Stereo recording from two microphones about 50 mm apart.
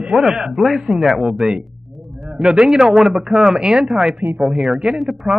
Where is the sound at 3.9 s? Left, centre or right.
Centre.